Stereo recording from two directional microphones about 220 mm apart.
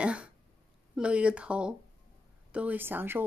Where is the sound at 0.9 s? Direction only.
5° right (ahead or behind).